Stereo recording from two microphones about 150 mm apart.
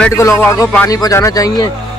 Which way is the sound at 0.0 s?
20° left (ahead or behind).